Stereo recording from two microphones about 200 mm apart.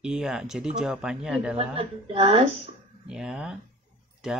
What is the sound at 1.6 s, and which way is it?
Speech, 30° right (ahead or behind).